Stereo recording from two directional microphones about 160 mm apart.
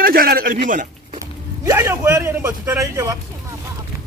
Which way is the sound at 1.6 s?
15° right (ahead or behind).